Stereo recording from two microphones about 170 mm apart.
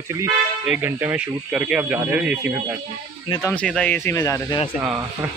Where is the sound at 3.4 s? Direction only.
10° left (ahead or behind).